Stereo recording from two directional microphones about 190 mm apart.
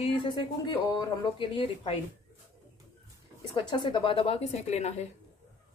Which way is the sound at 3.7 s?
25° left (ahead or behind).